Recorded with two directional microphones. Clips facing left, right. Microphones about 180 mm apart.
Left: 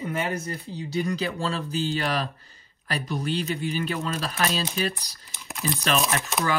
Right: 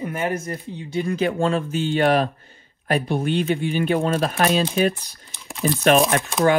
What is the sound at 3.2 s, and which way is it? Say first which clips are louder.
Speech: right 6 dB; 35° left (ahead or behind).